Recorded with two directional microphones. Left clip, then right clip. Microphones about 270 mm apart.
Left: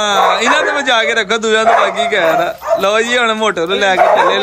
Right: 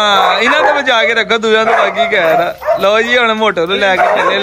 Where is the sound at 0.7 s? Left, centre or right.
Centre.